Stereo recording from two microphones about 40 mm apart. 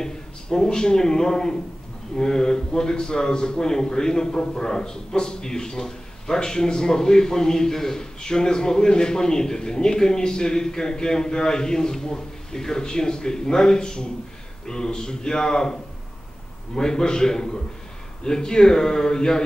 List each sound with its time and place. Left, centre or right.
0.0 s a man's voice: centre